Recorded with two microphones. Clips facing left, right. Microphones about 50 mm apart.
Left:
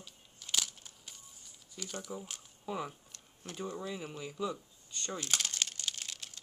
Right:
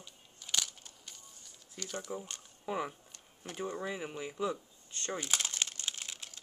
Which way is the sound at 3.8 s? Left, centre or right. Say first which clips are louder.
Right 2 dB; right.